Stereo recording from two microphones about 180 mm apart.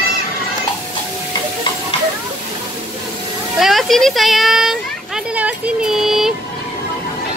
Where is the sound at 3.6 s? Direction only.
Centre (ahead or behind).